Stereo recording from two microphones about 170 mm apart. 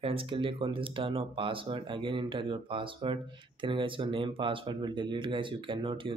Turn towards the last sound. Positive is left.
turn(degrees=-30)  # may be behind; listen again after turning